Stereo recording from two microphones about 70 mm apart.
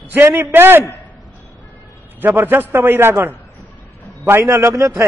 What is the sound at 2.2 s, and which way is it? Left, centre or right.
A man's voice, right.